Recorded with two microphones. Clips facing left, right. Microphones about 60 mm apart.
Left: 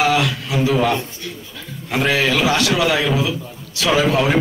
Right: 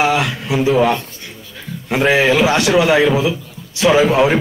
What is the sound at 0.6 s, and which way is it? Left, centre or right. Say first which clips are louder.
A man's voice: right 3 dB; centre.